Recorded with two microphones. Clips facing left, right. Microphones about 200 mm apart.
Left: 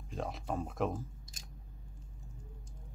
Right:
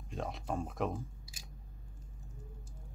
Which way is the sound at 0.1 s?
Centre (ahead or behind).